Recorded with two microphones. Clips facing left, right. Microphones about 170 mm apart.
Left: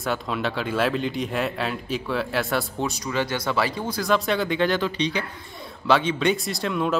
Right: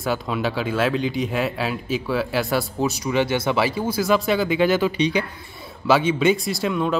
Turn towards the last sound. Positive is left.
turn(degrees=0)  # may be behind; listen again after turning